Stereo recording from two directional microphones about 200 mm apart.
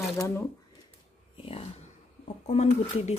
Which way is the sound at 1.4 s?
30° left (ahead or behind).